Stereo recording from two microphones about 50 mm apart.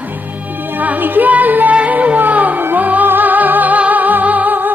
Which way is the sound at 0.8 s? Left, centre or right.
Right.